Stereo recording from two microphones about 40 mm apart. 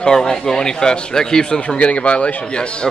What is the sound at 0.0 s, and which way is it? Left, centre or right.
A man's voice, centre.